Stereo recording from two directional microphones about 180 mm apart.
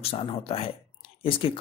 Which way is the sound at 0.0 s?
30° left (ahead or behind).